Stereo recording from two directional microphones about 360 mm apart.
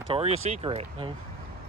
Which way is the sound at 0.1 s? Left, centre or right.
Centre.